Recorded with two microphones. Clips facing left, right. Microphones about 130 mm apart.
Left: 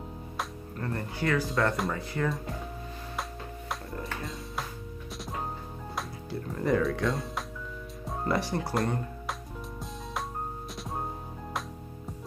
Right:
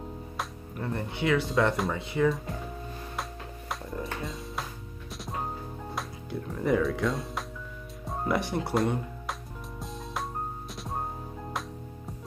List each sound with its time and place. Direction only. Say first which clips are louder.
0.7 s speech: right 1 dB; 15° right (ahead or behind)
1.5 s speech: right 2 dB; centre (ahead or behind)
3.2 s music: left 3 dB; centre (ahead or behind)
5.9 s speech: left 1 dB; centre (ahead or behind)
8.0 s music: right 1 dB; centre (ahead or behind)
8.4 s speech: right 1 dB; 20° right (ahead or behind)
8.7 s music: right 4 dB; centre (ahead or behind)